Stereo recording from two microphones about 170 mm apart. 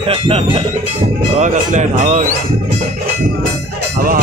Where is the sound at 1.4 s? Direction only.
45° right (ahead or behind).